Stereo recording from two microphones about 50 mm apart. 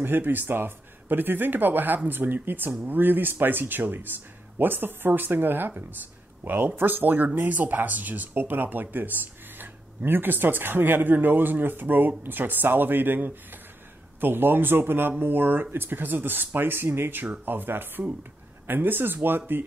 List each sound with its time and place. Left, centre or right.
0.0 s speech: right